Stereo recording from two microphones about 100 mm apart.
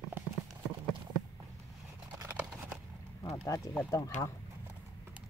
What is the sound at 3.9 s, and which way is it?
Speech, 30° left (ahead or behind).